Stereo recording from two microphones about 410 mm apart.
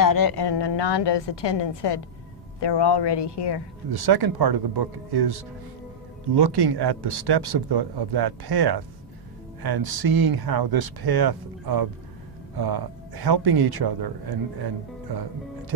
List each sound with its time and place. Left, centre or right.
0.0 s a woman's voice: left
3.9 s speech: right